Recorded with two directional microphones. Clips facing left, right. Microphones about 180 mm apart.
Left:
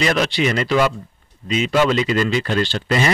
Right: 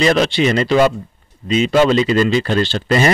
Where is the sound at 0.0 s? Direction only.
30° right (ahead or behind).